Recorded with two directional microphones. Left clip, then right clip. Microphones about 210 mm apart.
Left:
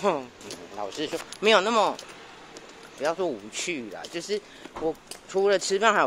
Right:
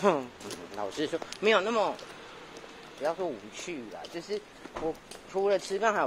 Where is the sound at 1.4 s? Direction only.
30° left (ahead or behind).